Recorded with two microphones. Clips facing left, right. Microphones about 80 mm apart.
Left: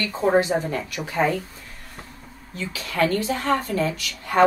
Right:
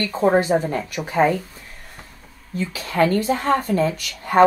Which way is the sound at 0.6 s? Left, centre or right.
Right.